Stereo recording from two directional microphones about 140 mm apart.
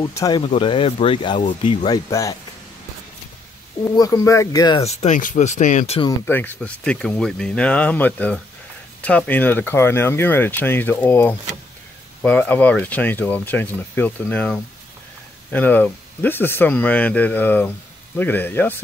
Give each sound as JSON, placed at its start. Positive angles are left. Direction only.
{"t": 0.0, "sound": "speech", "side_deg": 25}
{"t": 0.5, "sound": "speech", "side_deg": 35}
{"t": 1.9, "sound": "speech", "side_deg": 25}
{"t": 3.9, "sound": "speech", "side_deg": 25}
{"t": 4.7, "sound": "speech", "side_deg": 50}
{"t": 6.2, "sound": "speech", "side_deg": 15}